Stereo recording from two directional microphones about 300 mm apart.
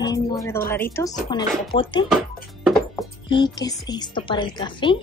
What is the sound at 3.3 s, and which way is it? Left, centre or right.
A woman's voice, centre.